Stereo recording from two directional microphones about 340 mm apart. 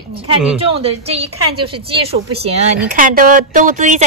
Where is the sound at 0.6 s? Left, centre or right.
Centre.